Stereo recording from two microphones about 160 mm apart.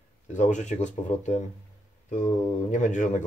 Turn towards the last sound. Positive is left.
turn(degrees=50)  # may be behind; listen again after turning